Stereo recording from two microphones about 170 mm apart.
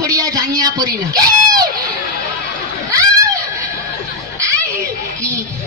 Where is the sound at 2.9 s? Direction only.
20° right (ahead or behind).